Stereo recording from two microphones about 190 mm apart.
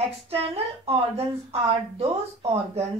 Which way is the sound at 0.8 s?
30° right (ahead or behind).